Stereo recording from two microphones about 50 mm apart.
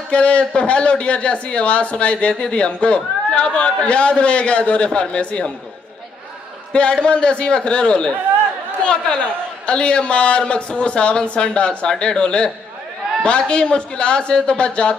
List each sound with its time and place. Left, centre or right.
0.1 s a man's voice: left
6.7 s a man's voice: left